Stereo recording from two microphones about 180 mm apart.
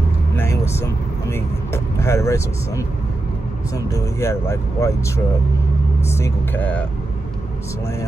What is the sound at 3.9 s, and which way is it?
Speech, 15° left (ahead or behind).